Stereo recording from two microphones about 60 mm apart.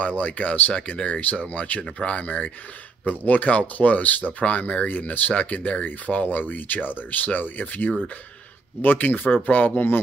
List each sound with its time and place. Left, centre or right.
0.0 s speech: left